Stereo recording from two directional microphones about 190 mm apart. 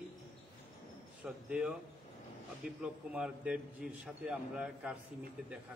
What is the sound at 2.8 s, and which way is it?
A man's voice, 5° right (ahead or behind).